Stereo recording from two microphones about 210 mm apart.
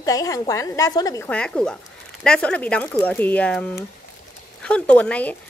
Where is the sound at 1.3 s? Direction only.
5° left (ahead or behind).